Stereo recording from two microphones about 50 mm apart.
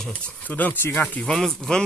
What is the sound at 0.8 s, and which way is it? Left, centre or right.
Speech, left.